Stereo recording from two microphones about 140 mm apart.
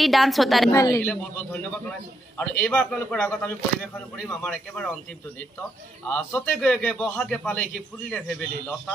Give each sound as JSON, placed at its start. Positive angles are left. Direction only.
{"t": 0.0, "sound": "a woman's voice", "side_deg": 0}
{"t": 0.7, "sound": "speech", "side_deg": 20}
{"t": 1.0, "sound": "a man's voice", "side_deg": 10}
{"t": 6.0, "sound": "a man's voice", "side_deg": 10}